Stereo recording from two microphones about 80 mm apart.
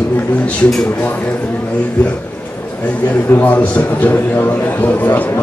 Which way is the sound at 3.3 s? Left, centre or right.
Left.